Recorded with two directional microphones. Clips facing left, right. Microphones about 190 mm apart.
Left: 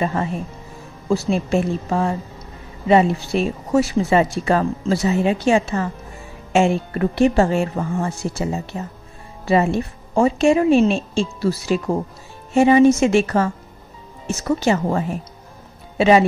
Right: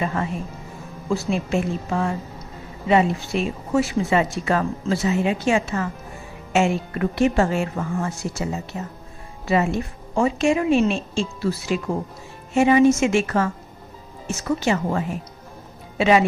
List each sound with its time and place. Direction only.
0.0 s speech: 30° left (ahead or behind)
14.6 s speech: 35° left (ahead or behind)